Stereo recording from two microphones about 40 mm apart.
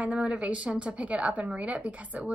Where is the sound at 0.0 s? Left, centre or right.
Right.